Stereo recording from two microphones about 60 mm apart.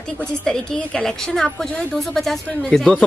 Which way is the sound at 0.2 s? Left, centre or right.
Centre.